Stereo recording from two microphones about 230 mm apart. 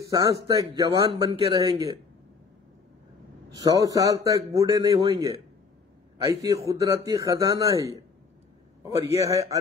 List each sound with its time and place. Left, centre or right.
0.0 s speech: centre
3.5 s a man's voice: centre
9.2 s speech: centre